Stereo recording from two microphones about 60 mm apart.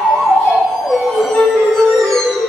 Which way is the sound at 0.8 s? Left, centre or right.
Centre.